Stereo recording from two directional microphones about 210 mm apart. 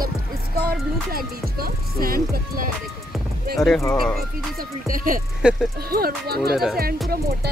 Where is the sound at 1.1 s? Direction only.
45° right (ahead or behind).